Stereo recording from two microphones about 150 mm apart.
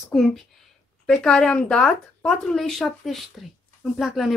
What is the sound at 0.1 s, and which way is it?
Speech, centre (ahead or behind).